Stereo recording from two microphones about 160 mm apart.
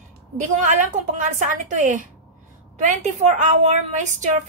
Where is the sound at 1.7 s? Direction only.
50° right (ahead or behind).